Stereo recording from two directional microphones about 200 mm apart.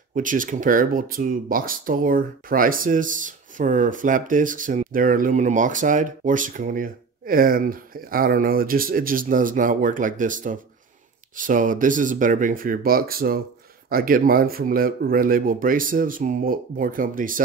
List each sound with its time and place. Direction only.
0.1 s speech: 40° right (ahead or behind)